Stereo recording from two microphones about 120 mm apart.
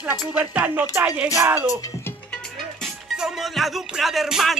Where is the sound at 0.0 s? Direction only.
15° right (ahead or behind).